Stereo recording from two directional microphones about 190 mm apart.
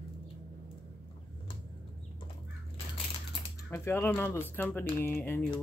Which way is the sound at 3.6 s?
10° left (ahead or behind).